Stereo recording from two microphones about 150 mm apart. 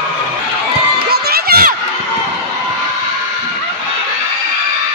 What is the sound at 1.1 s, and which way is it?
Crowd, 90° right.